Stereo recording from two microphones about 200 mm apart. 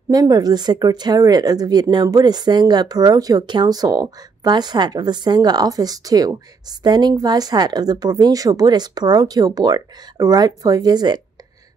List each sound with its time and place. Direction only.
0.1 s speech: 20° right (ahead or behind)